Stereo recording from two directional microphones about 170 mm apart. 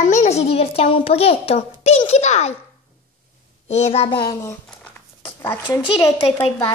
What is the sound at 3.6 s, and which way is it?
Speech, 40° left (ahead or behind).